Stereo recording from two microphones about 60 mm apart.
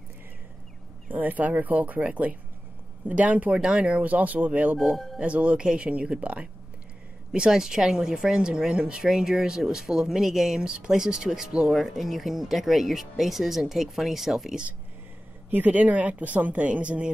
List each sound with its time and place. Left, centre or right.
1.1 s speech: right
4.7 s speech: centre
5.2 s speech: centre
15.5 s speech: right